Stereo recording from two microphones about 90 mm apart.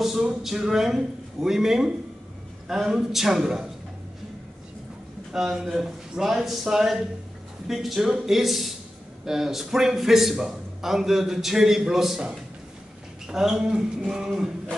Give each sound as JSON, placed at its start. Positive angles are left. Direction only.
{"t": 0.0, "sound": "a man's voice", "side_deg": -5}
{"t": 5.3, "sound": "a man's voice", "side_deg": -5}